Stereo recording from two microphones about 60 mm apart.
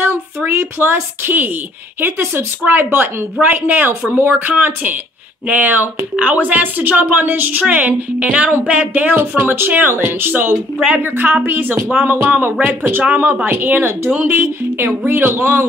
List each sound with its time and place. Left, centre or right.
0.0 s a woman's voice: right
12.5 s speech: right